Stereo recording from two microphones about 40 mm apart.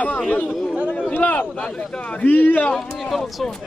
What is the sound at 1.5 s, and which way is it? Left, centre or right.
Speech, left.